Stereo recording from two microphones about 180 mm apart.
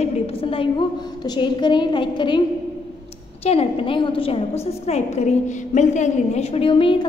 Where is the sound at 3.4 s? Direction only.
35° left (ahead or behind).